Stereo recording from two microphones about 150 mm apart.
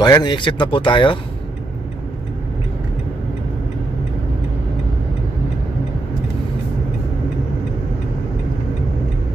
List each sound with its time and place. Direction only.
0.0 s speech: 30° left (ahead or behind)